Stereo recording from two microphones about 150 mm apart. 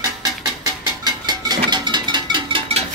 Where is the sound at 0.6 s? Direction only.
25° right (ahead or behind).